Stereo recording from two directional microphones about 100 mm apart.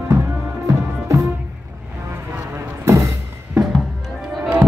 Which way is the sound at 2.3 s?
25° right (ahead or behind).